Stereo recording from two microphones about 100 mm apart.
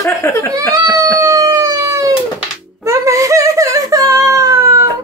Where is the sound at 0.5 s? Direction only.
40° right (ahead or behind).